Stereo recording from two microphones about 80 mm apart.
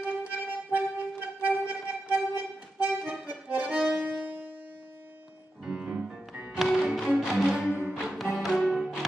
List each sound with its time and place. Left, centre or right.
0.0 s music: centre
5.7 s music: centre
6.5 s music: centre